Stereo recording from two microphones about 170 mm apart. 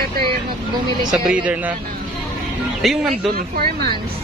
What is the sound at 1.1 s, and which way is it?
Speech, 5° right (ahead or behind).